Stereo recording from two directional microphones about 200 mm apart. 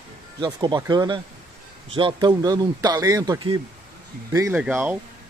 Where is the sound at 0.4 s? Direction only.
20° right (ahead or behind).